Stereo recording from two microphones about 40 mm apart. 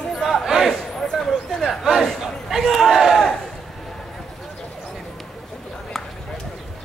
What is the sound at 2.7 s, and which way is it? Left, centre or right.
Battle cry, centre.